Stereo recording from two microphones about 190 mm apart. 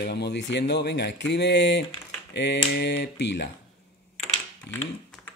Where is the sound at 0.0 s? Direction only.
60° left (ahead or behind).